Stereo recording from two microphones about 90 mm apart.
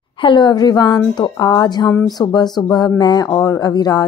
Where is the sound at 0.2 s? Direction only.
55° left (ahead or behind).